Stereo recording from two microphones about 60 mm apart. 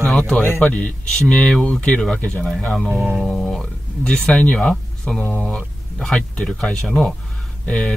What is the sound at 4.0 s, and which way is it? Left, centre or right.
Speech, centre.